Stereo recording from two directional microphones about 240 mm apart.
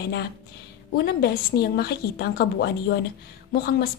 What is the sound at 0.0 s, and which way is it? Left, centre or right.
A woman's voice, left.